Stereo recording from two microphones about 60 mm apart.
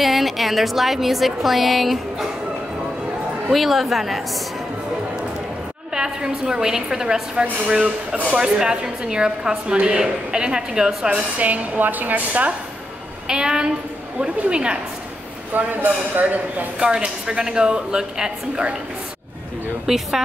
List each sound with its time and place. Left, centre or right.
0.0 s a woman's voice: centre
3.5 s a woman's voice: centre
5.9 s a woman's voice: centre
13.3 s a woman's voice: centre
15.5 s speech: right
16.8 s a woman's voice: centre
19.9 s a woman's voice: centre